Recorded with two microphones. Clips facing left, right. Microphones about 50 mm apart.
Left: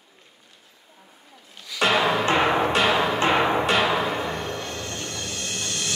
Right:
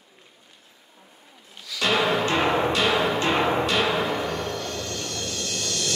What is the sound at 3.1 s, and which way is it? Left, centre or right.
Music, left.